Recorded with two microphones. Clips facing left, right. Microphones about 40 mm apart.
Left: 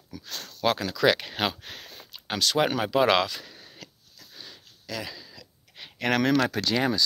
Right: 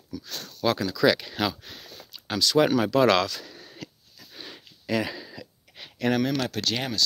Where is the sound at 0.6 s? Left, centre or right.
Left.